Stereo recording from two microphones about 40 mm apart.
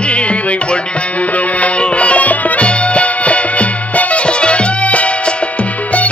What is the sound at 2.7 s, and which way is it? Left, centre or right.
Music, left.